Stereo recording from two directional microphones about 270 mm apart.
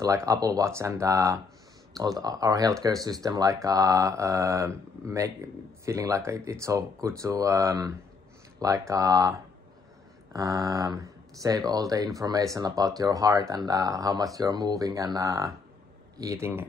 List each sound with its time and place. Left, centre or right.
0.0 s speech: centre
10.3 s speech: centre